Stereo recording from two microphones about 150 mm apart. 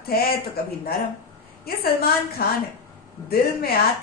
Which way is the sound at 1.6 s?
90° left.